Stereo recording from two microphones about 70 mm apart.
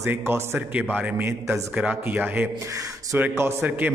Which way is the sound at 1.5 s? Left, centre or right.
Centre.